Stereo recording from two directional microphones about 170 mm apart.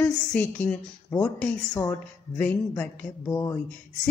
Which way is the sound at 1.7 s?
20° left (ahead or behind).